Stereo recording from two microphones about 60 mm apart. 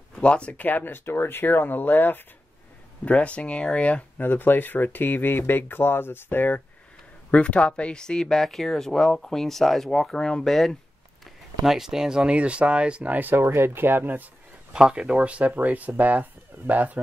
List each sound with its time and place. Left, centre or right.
0.1 s speech: centre; by 2.2 s left
3.1 s speech: left
4.2 s speech: left
7.2 s speech: left; by 13.3 s right
13.3 s speech: right
14.7 s speech: centre